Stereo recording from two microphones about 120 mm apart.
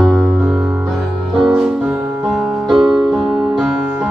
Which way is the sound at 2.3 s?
5° right (ahead or behind).